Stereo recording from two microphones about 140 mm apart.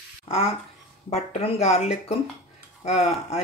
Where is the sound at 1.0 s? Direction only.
45° left (ahead or behind).